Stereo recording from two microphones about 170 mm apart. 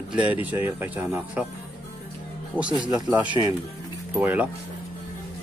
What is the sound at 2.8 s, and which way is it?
Speech, 25° right (ahead or behind).